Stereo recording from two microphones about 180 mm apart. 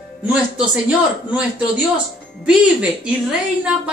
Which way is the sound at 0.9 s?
5° right (ahead or behind).